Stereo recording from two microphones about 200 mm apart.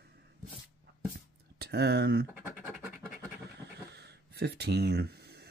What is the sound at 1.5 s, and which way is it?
Speech, 55° right (ahead or behind).